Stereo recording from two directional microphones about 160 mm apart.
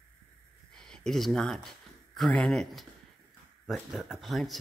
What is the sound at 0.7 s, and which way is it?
Speech, 5° left (ahead or behind).